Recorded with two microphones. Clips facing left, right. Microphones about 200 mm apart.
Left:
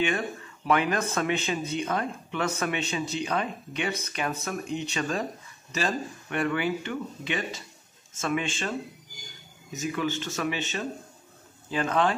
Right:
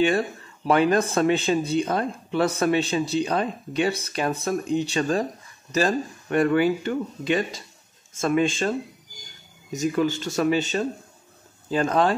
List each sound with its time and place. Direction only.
0.7 s speech: 35° right (ahead or behind)
9.8 s speech: 35° right (ahead or behind)